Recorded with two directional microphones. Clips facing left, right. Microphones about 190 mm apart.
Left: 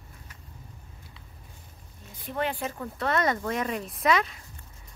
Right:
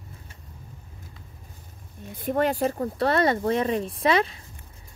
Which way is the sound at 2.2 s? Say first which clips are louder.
Right 7 dB; 45° right (ahead or behind).